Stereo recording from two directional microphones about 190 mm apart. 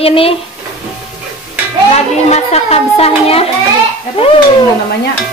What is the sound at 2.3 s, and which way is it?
Speech, 35° left (ahead or behind).